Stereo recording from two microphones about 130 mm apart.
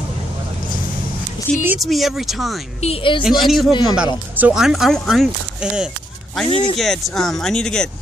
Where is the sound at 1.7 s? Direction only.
Centre (ahead or behind).